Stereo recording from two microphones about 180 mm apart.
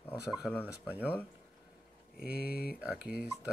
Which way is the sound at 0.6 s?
10° left (ahead or behind).